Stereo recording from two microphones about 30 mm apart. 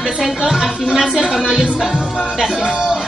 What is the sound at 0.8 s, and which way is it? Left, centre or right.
Music, right.